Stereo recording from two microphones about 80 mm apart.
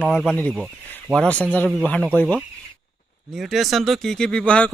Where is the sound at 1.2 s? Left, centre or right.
Centre.